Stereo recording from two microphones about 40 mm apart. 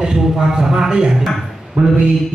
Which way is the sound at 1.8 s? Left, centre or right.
Right.